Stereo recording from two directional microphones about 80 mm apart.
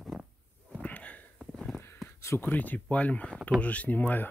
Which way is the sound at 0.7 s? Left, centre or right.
Centre.